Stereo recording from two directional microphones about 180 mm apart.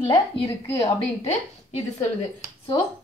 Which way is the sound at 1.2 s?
35° left (ahead or behind).